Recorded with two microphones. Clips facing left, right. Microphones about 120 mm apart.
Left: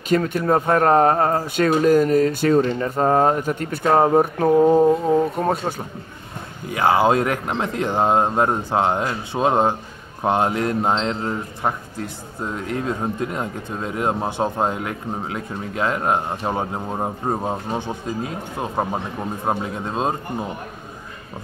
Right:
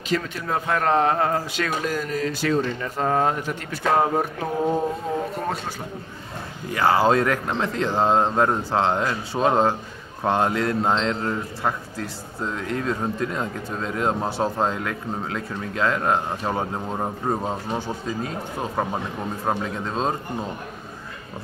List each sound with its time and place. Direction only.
0.1 s a man's voice: 50° left (ahead or behind)
6.7 s speech: 15° left (ahead or behind)